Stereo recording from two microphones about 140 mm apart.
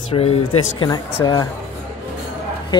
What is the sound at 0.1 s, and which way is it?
Speech, 45° left (ahead or behind).